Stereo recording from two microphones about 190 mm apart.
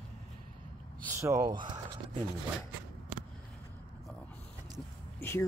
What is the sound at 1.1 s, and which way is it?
Speech, 15° right (ahead or behind).